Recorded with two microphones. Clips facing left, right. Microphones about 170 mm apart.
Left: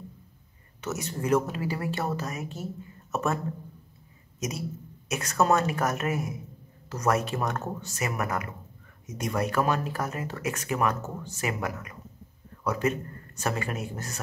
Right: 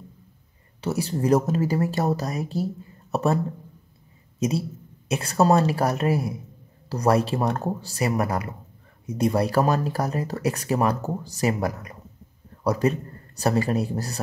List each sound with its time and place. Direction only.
0.7 s speech: 30° right (ahead or behind)
4.4 s a man's voice: 30° right (ahead or behind)